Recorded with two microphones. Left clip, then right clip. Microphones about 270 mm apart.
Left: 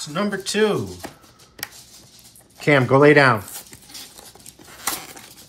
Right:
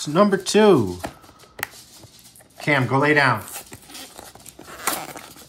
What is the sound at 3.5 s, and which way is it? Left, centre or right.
Dog, centre.